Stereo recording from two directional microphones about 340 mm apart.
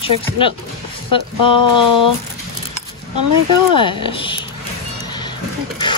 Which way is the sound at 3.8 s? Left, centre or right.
Centre.